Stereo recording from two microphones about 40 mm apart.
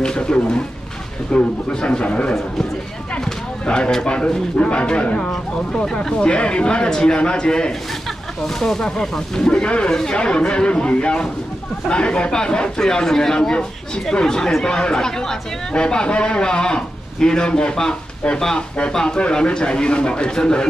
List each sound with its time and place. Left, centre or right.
0.0 s a man's voice: left
3.3 s a sound: left
3.9 s a man's voice: left